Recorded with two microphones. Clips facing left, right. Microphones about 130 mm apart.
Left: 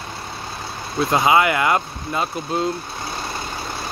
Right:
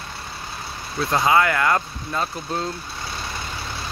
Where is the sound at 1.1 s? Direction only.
15° left (ahead or behind).